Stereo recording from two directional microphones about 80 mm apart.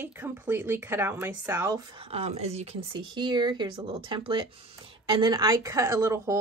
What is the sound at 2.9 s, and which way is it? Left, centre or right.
Speech, right.